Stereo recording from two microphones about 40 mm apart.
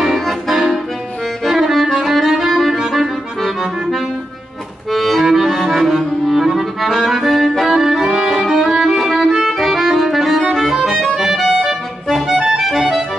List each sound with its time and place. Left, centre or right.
0.2 s accordion: centre
1.4 s music: centre
2.8 s accordion: centre
4.9 s accordion: centre